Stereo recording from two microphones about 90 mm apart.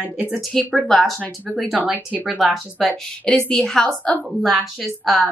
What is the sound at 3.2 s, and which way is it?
Speech, 10° left (ahead or behind).